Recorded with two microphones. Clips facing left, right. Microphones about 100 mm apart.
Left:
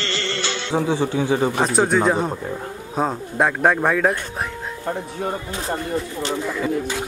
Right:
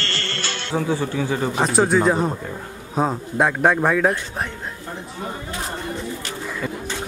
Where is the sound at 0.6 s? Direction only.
20° left (ahead or behind).